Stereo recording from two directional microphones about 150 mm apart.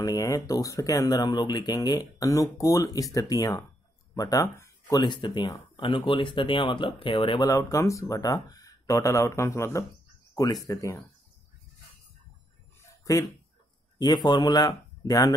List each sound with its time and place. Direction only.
0.0 s speech: 20° left (ahead or behind)
13.1 s speech: 20° left (ahead or behind)